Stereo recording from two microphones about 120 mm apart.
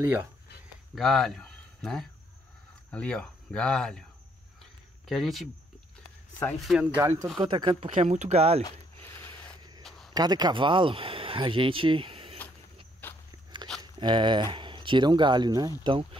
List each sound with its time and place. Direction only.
0.0 s speech: 20° right (ahead or behind)
0.9 s speech: centre (ahead or behind)
4.6 s cricket: centre (ahead or behind)
6.6 s speech: centre (ahead or behind)
7.0 s speech: 30° right (ahead or behind)
7.3 s speech: 45° right (ahead or behind)
8.0 s speech: 75° right (ahead or behind)
9.8 s a sound: 5° left (ahead or behind)
10.1 s speech: 35° right (ahead or behind)
13.7 s speech: 40° right (ahead or behind)
15.8 s speech: 45° right (ahead or behind)